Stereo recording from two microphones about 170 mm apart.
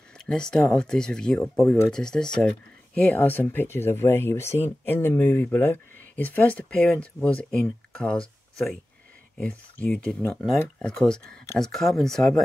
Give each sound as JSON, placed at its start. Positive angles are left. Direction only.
{"t": 0.2, "sound": "speech", "side_deg": 5}
{"t": 9.4, "sound": "speech", "side_deg": 10}